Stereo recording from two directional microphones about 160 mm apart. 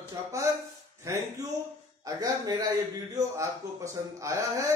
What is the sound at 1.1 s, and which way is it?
A man's voice, 20° right (ahead or behind).